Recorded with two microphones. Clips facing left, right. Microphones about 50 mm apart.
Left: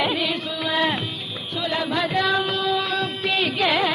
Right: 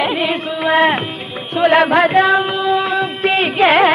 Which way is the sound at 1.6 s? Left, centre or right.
Right.